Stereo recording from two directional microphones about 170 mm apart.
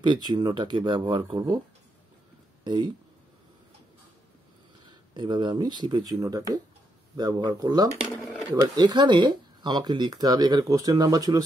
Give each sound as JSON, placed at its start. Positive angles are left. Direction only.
{"t": 0.0, "sound": "speech", "side_deg": -25}
{"t": 2.6, "sound": "speech", "side_deg": -25}
{"t": 5.1, "sound": "speech", "side_deg": -25}
{"t": 8.0, "sound": "speech", "side_deg": 0}
{"t": 8.7, "sound": "speech", "side_deg": -25}